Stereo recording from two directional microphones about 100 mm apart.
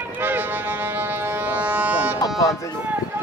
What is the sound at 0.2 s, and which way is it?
Music, 20° right (ahead or behind).